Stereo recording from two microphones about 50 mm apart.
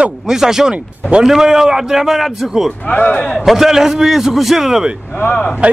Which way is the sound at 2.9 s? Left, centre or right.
Left.